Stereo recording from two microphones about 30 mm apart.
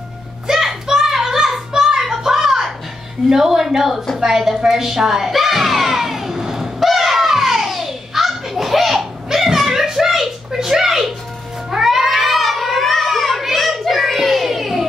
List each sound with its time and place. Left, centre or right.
0.5 s child singing: centre
2.0 s a sound: centre
3.3 s a woman's voice: centre
4.6 s a sound: centre
6.8 s children playing: centre
11.7 s cat: centre
13.4 s children playing: centre